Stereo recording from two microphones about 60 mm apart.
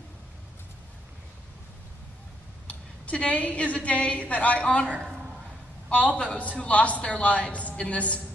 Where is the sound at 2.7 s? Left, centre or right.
Left.